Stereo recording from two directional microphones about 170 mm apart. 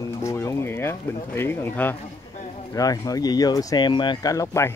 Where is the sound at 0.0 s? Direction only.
20° left (ahead or behind).